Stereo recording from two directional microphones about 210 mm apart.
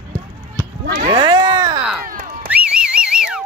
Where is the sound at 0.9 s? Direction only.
25° right (ahead or behind).